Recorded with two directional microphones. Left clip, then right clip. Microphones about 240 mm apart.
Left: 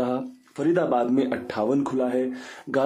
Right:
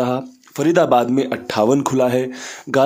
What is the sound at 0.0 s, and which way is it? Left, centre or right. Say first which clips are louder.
Speech: right 6 dB; right.